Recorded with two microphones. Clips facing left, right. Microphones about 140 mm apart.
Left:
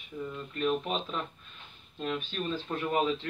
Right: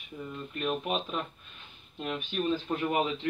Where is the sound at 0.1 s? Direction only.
30° right (ahead or behind).